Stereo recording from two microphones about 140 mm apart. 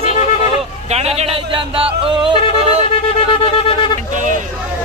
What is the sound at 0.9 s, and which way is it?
Music, 50° right (ahead or behind).